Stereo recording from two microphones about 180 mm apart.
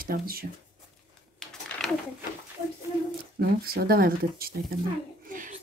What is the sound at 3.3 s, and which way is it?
Speech, 60° right (ahead or behind).